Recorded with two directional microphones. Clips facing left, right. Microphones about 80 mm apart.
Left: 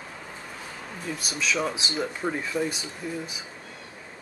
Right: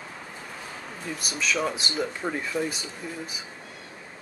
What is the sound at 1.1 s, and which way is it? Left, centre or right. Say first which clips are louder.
Speech: even; centre.